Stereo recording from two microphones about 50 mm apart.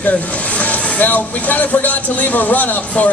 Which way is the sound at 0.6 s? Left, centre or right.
Left.